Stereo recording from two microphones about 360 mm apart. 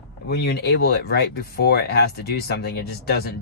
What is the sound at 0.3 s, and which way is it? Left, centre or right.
Speech, left.